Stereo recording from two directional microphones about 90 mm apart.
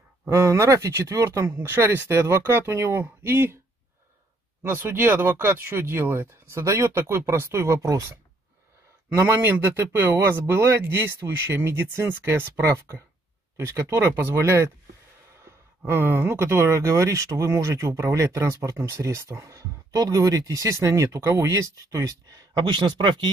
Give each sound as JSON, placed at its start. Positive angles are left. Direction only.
{"t": 0.3, "sound": "speech", "side_deg": -35}
{"t": 4.6, "sound": "speech", "side_deg": -25}
{"t": 9.1, "sound": "speech", "side_deg": -25}
{"t": 15.9, "sound": "speech", "side_deg": -25}
{"t": 22.7, "sound": "speech", "side_deg": -60}